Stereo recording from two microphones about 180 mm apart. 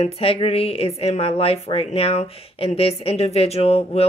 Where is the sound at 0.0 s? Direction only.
30° left (ahead or behind).